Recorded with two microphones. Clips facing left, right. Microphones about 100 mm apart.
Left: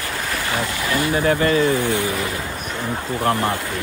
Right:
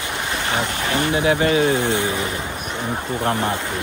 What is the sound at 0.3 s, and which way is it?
Speech, 25° right (ahead or behind).